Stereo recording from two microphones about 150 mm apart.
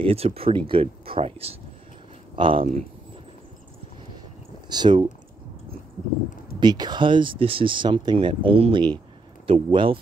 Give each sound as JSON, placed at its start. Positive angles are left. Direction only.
{"t": 0.0, "sound": "speech", "side_deg": -40}
{"t": 4.6, "sound": "speech", "side_deg": -30}
{"t": 6.6, "sound": "speech", "side_deg": -30}